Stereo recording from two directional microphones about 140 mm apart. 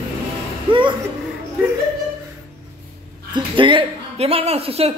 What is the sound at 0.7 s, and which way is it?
Chuckle, 35° right (ahead or behind).